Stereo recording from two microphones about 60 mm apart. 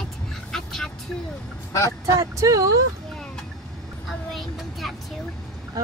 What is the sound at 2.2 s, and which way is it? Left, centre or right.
Speech, right.